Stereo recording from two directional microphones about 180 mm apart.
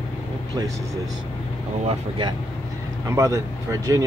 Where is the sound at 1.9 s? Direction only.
25° right (ahead or behind).